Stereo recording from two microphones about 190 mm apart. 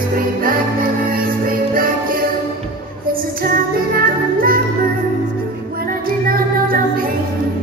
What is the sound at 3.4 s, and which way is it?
Music, 50° right (ahead or behind).